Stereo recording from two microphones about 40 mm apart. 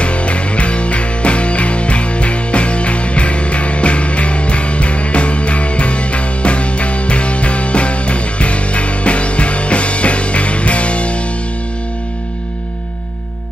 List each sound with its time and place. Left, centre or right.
0.0 s music: left